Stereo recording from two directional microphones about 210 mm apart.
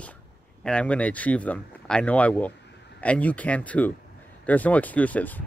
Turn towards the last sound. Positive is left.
turn(degrees=5)  # may be behind; listen again after turning